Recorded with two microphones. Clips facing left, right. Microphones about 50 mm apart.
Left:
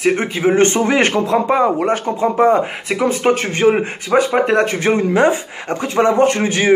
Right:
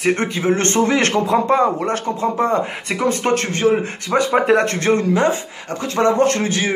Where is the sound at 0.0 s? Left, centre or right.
Centre.